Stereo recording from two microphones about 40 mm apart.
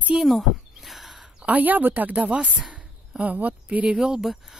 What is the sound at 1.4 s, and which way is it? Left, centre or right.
Speech, right.